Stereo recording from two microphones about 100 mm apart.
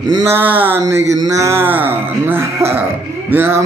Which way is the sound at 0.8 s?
35° right (ahead or behind).